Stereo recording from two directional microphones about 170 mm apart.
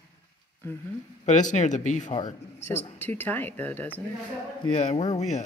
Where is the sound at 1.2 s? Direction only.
45° left (ahead or behind).